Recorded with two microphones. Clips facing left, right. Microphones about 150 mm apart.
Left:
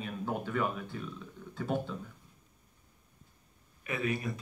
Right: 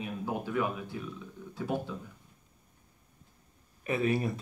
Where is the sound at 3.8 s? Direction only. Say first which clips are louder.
Right 5 dB; 30° right (ahead or behind).